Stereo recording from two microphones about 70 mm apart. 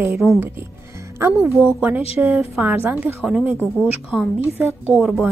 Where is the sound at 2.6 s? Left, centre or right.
Right.